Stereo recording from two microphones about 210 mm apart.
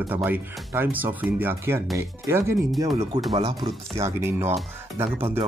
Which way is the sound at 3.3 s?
25° right (ahead or behind).